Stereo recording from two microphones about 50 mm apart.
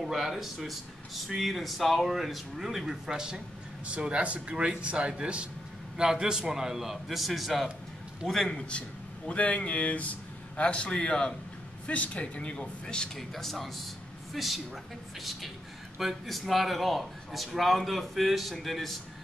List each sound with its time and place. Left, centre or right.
0.0 s a man's voice: centre
8.5 s speech: left
13.3 s speech: centre
16.0 s speech: centre